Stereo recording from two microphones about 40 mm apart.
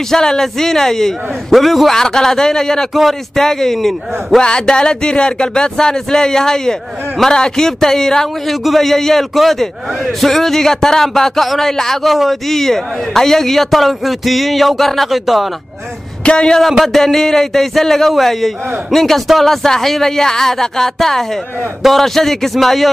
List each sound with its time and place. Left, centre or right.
0.1 s speech: centre
2.9 s a man's voice: centre
3.3 s speech: centre
4.4 s a man's voice: left; by 15.5 s centre
16.3 s speech: left
16.8 s a man's voice: centre